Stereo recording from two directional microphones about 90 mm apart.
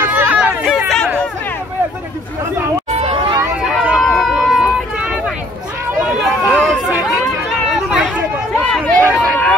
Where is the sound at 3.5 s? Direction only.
5° right (ahead or behind).